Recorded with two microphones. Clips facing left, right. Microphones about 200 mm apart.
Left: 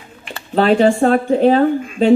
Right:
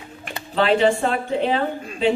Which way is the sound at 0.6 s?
45° left (ahead or behind).